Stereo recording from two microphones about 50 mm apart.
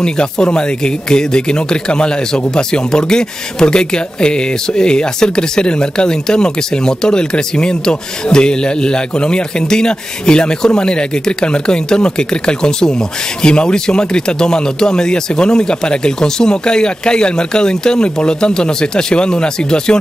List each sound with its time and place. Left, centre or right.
0.0 s speech: centre